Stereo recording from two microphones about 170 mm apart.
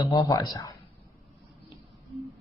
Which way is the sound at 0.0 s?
20° left (ahead or behind).